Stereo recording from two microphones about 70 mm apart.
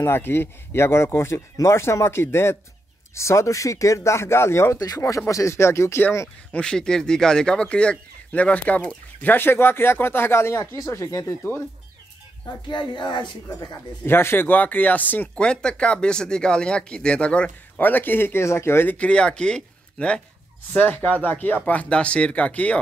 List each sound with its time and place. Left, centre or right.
0.0 s speech: left
4.7 s speech: left
5.3 s speech: left
6.5 s speech: centre; by 11.3 s left
12.6 s speech: left
14.0 s speech: left
15.3 s speech: centre
17.8 s speech: left
18.9 s speech: centre